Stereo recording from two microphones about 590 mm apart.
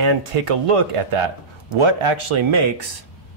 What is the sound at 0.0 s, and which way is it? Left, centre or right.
Speech, right.